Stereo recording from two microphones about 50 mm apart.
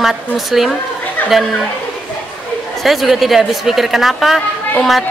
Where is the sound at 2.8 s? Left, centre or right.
Centre.